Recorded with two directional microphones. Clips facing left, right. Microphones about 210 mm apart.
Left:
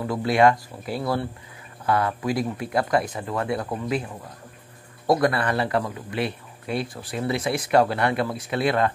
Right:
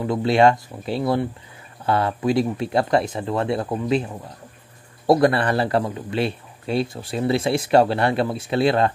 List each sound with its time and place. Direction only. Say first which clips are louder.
0.0 s speech: right 2 dB; 25° right (ahead or behind)
5.0 s speech: right 4 dB; 30° right (ahead or behind)